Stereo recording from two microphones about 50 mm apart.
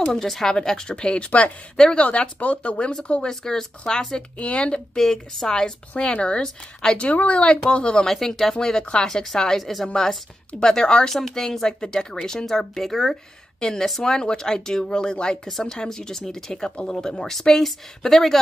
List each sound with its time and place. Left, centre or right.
0.0 s speech: centre; by 2.9 s left
3.1 s speech: centre
4.4 s speech: left
7.1 s a woman's voice: left; by 9.8 s centre
10.6 s speech: centre